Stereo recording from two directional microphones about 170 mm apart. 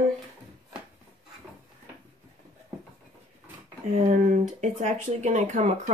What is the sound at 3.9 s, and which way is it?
Speech, 40° right (ahead or behind).